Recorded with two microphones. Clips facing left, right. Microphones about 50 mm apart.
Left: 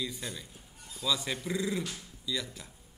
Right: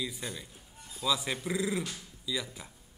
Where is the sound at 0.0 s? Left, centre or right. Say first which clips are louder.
Even; centre.